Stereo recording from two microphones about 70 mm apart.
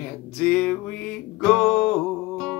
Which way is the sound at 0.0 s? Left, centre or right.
Centre.